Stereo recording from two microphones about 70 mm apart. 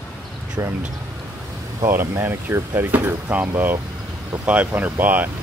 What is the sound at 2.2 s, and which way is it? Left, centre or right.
Speech, right.